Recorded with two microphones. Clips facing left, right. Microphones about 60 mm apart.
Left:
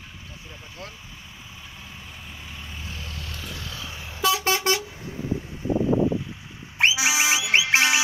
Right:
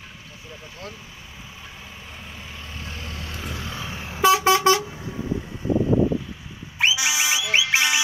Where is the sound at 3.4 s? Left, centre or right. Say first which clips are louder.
Right 6 dB; right.